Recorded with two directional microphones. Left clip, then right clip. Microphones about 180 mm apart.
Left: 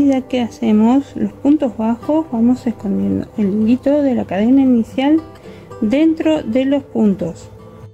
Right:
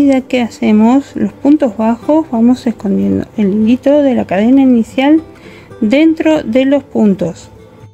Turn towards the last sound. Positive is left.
turn(degrees=-20)  # may be behind; listen again after turning